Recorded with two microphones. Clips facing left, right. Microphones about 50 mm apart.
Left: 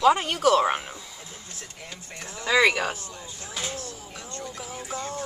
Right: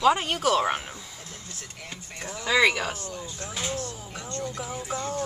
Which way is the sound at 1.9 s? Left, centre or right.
Right.